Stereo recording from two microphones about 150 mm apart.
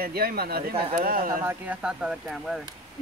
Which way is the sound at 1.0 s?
70° right (ahead or behind).